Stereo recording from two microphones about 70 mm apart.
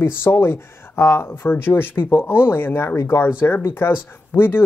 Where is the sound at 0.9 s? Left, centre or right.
Left.